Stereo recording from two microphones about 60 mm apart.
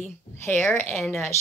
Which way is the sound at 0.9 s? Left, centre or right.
Centre.